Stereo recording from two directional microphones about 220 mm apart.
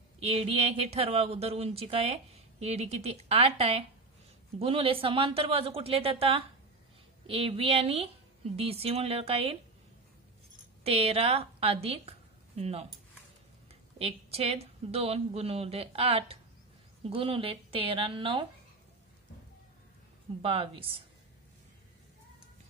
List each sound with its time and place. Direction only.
0.2 s speech: 25° right (ahead or behind)
10.8 s a woman's voice: 25° right (ahead or behind)
13.9 s speech: 25° right (ahead or behind)
20.4 s speech: 25° right (ahead or behind)